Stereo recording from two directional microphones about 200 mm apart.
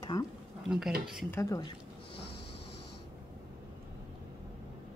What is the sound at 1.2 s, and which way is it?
Speech, 15° left (ahead or behind).